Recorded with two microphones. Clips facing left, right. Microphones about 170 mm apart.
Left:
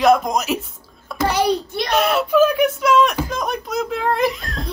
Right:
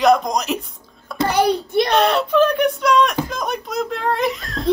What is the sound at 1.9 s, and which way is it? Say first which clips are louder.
Speech: left 2 dB; 5° left (ahead or behind).